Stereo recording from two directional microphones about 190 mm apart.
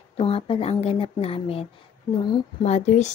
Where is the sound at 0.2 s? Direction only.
30° left (ahead or behind).